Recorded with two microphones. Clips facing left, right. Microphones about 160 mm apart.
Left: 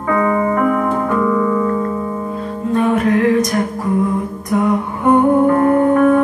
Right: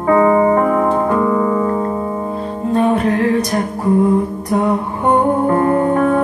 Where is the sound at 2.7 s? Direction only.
30° right (ahead or behind).